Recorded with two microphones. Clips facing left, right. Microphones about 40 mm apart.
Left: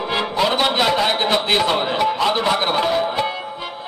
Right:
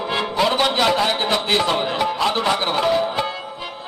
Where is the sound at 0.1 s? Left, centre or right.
Centre.